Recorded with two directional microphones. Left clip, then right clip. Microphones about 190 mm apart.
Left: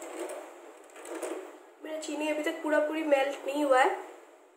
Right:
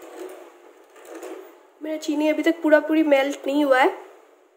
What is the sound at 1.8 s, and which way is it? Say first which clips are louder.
A woman's voice: right 10 dB; 50° right (ahead or behind).